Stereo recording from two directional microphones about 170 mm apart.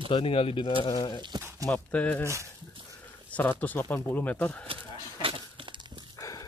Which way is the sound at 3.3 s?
10° left (ahead or behind).